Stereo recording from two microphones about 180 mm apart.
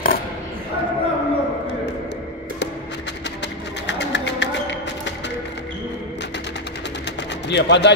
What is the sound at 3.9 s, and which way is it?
Music, 75° left (ahead or behind).